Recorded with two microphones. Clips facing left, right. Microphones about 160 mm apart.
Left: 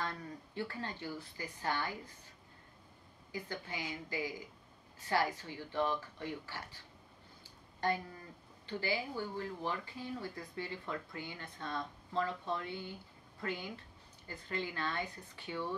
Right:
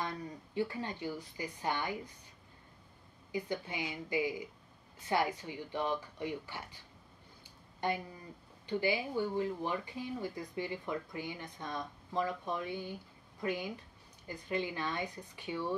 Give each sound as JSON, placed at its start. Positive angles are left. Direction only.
{"t": 0.0, "sound": "speech", "side_deg": -15}
{"t": 3.3, "sound": "speech", "side_deg": -20}
{"t": 8.6, "sound": "speech", "side_deg": -15}